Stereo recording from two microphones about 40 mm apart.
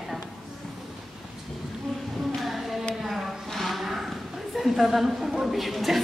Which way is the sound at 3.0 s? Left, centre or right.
Centre.